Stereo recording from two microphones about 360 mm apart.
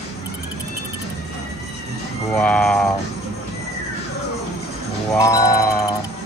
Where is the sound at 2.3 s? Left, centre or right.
Centre.